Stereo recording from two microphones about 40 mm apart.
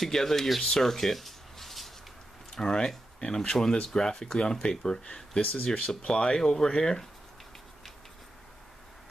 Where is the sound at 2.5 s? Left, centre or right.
Centre.